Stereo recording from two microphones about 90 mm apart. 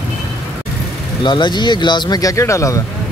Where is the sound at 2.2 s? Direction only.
35° left (ahead or behind).